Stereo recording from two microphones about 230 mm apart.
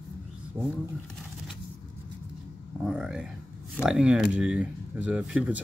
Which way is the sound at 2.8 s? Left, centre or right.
Centre.